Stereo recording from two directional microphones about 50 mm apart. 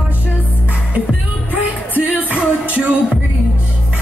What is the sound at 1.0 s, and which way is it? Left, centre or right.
Music, left.